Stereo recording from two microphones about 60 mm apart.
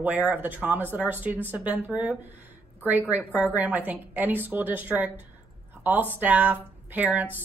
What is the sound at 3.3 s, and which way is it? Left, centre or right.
A woman's voice, right.